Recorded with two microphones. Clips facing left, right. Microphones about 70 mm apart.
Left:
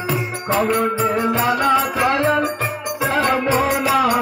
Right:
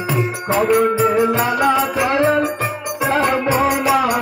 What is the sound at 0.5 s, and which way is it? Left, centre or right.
Music, centre.